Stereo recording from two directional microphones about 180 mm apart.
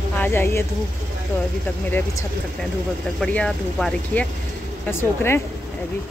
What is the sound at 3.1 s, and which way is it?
Speech, 5° left (ahead or behind).